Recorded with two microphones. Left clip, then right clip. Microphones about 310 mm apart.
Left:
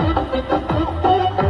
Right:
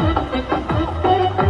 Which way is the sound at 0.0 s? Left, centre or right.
Centre.